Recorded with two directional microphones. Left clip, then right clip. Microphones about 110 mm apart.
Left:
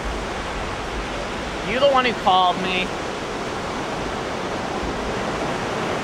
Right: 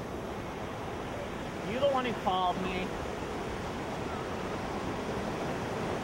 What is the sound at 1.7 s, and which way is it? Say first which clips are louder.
Speech: left 12 dB; 35° left (ahead or behind).